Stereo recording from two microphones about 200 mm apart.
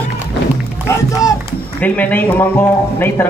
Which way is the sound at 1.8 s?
10° left (ahead or behind).